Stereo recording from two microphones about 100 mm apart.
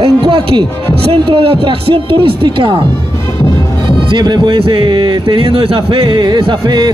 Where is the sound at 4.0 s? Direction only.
55° right (ahead or behind).